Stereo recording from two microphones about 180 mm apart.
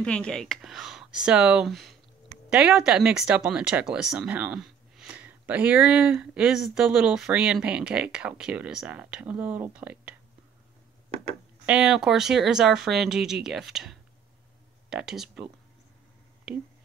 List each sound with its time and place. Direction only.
0.0 s speech: 5° left (ahead or behind)
11.6 s speech: 5° right (ahead or behind)